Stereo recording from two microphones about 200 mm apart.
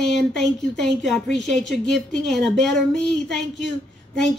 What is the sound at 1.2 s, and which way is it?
Speech, 60° left (ahead or behind).